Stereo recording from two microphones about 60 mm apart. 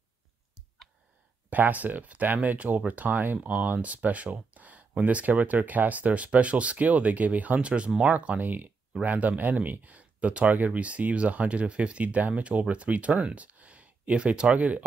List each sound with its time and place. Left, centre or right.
1.5 s speech: right